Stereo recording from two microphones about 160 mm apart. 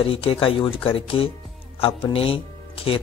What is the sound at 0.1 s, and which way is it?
Speech, 35° left (ahead or behind).